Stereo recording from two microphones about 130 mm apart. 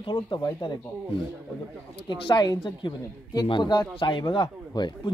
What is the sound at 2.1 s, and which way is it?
Speech, 35° left (ahead or behind).